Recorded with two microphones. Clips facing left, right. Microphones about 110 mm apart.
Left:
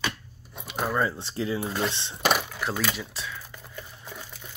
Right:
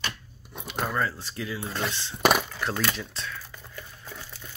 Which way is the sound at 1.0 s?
20° left (ahead or behind).